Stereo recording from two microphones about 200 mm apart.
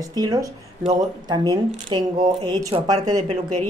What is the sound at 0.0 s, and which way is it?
A woman's voice, 20° right (ahead or behind).